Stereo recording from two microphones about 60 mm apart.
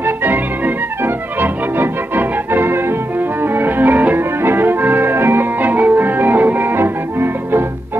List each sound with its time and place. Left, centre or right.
0.0 s organ: right
3.5 s music: right